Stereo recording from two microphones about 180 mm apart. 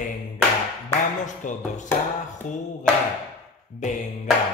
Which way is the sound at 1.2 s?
45° left (ahead or behind).